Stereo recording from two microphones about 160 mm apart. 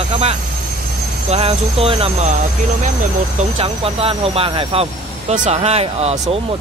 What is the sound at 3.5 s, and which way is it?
Speech, 35° right (ahead or behind).